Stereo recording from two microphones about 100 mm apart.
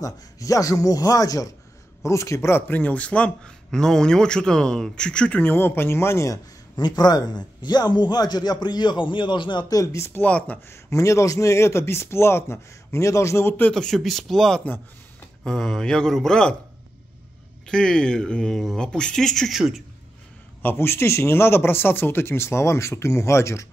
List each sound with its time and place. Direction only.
0.0 s speech: 35° left (ahead or behind); by 5.4 s 10° left (ahead or behind)
5.4 s speech: 20° left (ahead or behind)
6.8 s a man's voice: 45° left (ahead or behind)
9.9 s speech: 25° left (ahead or behind)
10.9 s speech: 30° left (ahead or behind)
13.7 s speech: 5° left (ahead or behind)
17.6 s speech: 5° left (ahead or behind)
20.6 s speech: 25° left (ahead or behind)